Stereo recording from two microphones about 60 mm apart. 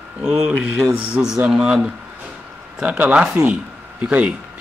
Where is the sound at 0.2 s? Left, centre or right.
Centre.